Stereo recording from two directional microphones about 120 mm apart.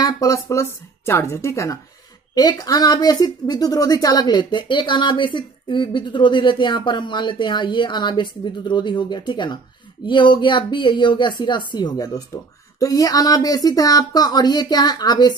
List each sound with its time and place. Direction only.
0.0 s speech: 30° left (ahead or behind)